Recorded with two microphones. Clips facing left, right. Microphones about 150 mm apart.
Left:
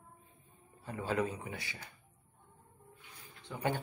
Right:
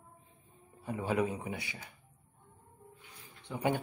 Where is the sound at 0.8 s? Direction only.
15° right (ahead or behind).